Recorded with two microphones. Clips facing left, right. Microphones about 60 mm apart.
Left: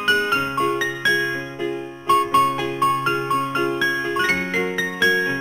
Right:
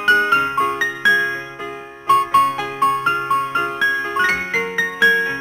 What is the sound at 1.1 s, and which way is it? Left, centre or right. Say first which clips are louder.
Music: right 3 dB; centre.